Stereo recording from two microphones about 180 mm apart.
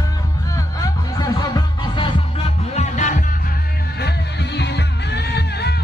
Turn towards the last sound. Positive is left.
turn(degrees=65)  # may be behind; listen again after turning